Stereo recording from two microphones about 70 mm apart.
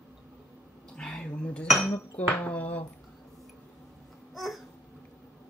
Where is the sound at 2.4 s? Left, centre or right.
Left.